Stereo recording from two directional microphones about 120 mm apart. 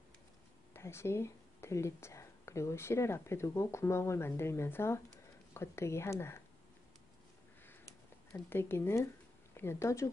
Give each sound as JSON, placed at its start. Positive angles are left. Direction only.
{"t": 0.7, "sound": "speech", "side_deg": 20}
{"t": 7.6, "sound": "a sound", "side_deg": 20}
{"t": 9.5, "sound": "speech", "side_deg": 20}